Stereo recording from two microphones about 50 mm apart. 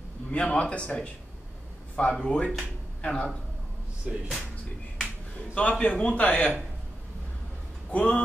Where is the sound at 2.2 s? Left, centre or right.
Left.